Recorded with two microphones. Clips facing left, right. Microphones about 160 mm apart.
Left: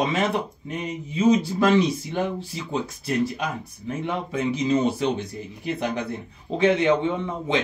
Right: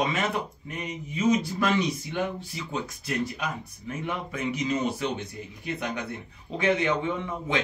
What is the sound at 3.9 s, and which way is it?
Speech, 30° left (ahead or behind).